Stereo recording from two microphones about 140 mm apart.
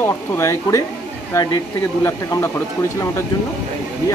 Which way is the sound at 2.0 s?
20° left (ahead or behind).